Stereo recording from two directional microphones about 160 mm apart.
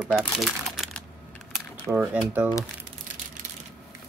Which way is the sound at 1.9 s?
10° right (ahead or behind).